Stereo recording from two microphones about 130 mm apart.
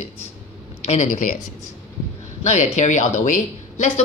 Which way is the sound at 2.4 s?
65° left (ahead or behind).